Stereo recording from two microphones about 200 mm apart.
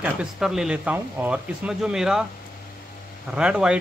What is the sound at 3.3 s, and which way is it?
Speech, 5° right (ahead or behind).